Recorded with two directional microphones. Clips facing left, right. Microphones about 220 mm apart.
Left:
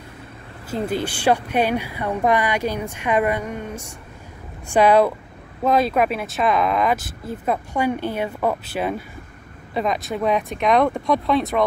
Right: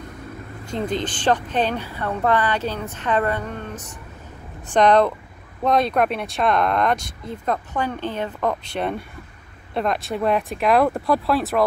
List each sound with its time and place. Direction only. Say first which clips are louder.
0.7 s speech: left 1 dB; 5° left (ahead or behind)